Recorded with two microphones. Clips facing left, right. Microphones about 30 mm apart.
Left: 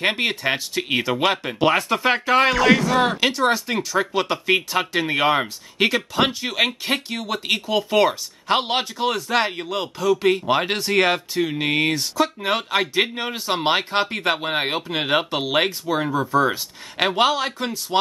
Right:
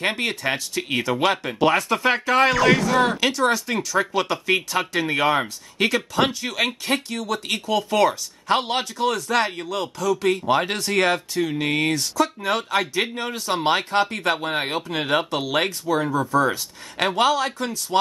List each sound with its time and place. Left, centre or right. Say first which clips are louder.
0.0 s speech: left 2 dB; centre